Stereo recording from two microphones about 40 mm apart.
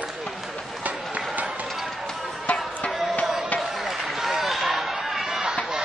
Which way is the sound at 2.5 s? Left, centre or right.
Left.